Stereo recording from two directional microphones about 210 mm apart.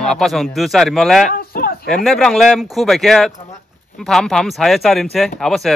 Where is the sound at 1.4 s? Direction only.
45° left (ahead or behind).